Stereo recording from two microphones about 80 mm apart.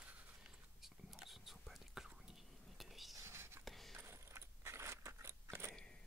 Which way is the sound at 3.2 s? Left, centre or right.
Right.